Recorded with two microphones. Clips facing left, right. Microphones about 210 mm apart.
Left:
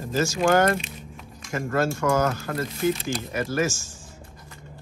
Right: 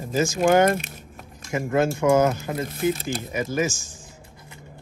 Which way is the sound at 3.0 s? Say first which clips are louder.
Even; 50° right (ahead or behind).